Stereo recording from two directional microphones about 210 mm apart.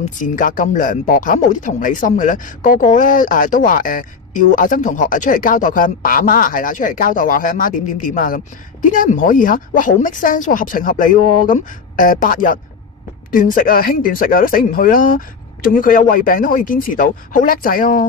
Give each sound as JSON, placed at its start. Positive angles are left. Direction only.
{"t": 0.0, "sound": "speech", "side_deg": 40}